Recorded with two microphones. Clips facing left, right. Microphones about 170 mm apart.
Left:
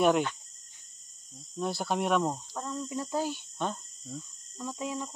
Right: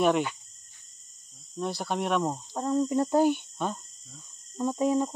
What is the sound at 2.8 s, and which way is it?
Cricket, 55° right (ahead or behind).